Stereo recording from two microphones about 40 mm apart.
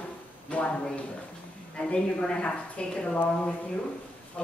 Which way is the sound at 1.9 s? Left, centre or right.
Left.